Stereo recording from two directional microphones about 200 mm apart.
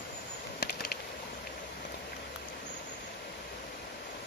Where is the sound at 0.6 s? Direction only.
55° left (ahead or behind).